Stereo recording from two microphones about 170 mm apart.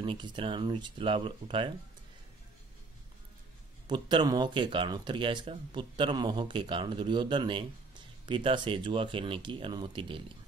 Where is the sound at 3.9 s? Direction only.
25° right (ahead or behind).